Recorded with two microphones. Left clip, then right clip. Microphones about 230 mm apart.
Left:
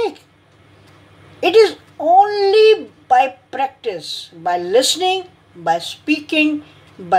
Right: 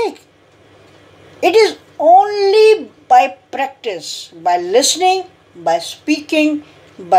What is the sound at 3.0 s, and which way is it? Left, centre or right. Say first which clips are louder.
A woman's voice: right 3 dB; centre.